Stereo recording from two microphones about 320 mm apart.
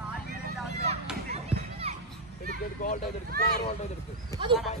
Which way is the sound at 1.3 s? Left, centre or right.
Centre.